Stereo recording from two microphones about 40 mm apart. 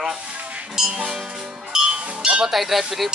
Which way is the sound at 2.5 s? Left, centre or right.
Centre.